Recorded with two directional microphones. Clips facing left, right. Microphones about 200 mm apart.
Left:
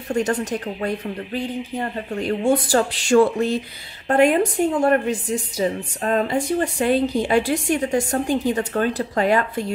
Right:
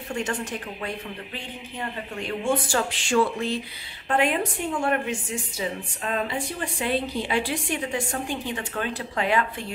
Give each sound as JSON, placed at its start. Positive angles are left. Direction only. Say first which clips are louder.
{"t": 0.1, "sound": "a woman's voice", "louder": "left 8 dB", "side_deg": 40}